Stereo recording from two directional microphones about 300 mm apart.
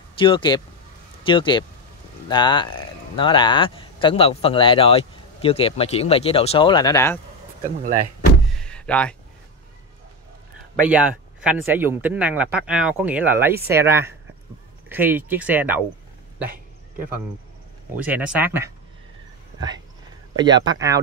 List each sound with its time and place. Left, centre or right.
0.2 s speech: centre
7.8 s speech: right
8.5 s door: centre
10.9 s speech: centre
17.9 s speech: centre
20.3 s speech: centre